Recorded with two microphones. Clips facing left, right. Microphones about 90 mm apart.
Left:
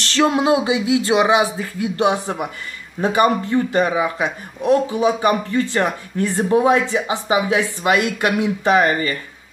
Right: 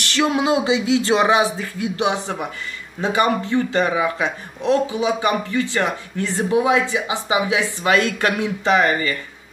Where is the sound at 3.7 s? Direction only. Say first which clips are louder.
Left 1 dB; 20° left (ahead or behind).